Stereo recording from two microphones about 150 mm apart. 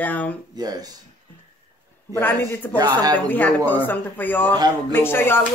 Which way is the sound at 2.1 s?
15° left (ahead or behind).